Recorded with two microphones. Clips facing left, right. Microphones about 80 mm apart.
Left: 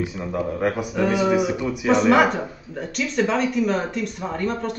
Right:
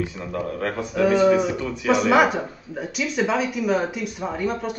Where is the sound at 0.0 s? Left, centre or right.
Centre.